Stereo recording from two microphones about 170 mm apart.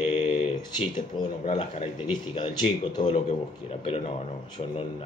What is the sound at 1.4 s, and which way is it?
A man's voice, 40° left (ahead or behind).